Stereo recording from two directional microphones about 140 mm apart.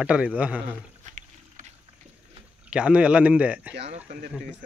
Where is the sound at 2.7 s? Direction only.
10° right (ahead or behind).